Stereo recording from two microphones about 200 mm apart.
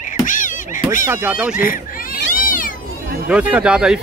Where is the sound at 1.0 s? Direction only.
10° right (ahead or behind).